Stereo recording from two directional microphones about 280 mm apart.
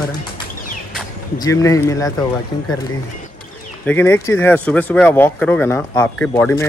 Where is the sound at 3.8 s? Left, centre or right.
Centre.